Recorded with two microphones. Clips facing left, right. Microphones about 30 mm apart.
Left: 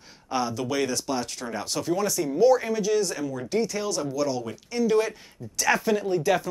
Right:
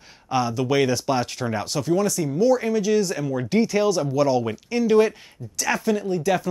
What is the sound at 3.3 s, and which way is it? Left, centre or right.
Speech, right.